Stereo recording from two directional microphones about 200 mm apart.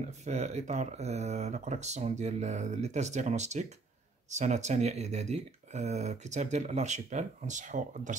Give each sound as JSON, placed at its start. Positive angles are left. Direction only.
{"t": 0.2, "sound": "speech", "side_deg": -35}